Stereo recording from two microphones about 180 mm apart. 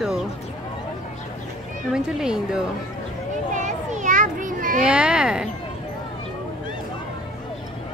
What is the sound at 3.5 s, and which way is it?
Children playing, 40° right (ahead or behind).